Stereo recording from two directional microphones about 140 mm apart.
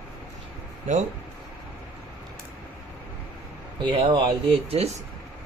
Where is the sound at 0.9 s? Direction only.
60° right (ahead or behind).